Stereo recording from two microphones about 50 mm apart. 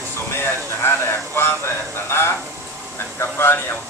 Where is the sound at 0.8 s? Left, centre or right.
Left.